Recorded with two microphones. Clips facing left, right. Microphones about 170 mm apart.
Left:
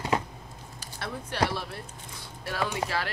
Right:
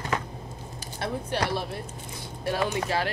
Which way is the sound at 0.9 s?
20° right (ahead or behind).